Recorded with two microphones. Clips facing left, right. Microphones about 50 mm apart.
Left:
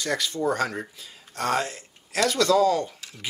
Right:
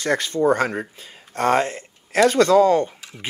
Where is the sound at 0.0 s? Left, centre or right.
Right.